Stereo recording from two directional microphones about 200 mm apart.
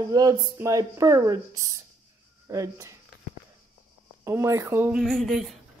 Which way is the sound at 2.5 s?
15° right (ahead or behind).